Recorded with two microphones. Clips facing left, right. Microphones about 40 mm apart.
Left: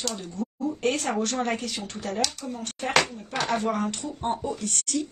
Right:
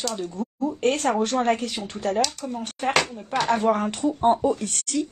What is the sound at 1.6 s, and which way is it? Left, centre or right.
Speech, centre.